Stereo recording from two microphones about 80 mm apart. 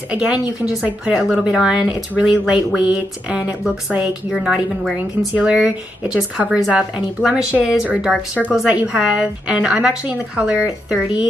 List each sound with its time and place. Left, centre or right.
0.1 s speech: centre
4.3 s a woman's voice: centre